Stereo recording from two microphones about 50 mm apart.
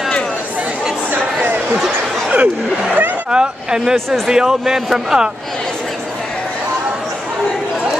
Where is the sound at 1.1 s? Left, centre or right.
Right.